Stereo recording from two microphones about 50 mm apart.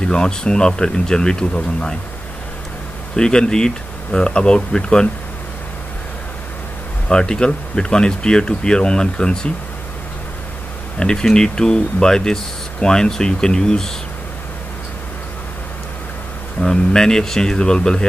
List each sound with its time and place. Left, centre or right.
0.1 s speech: centre
3.2 s speech: centre
7.1 s speech: centre
11.0 s speech: centre
16.6 s speech: centre